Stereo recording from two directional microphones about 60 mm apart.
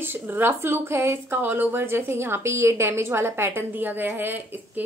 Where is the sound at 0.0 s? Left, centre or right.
Right.